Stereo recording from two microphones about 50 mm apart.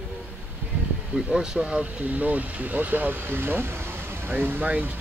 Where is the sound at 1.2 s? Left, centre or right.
Centre; by 3.2 s right.